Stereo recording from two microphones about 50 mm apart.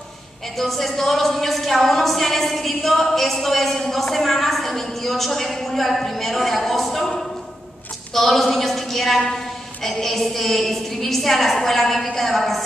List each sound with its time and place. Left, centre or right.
0.6 s a woman's voice: centre
8.1 s a sound: centre
9.8 s a woman's voice: centre